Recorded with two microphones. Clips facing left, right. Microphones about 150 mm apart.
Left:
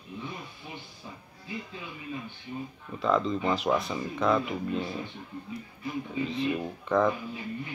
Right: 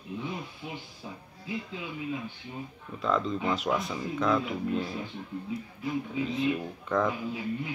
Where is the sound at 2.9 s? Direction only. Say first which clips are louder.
Left 2 dB; centre (ahead or behind).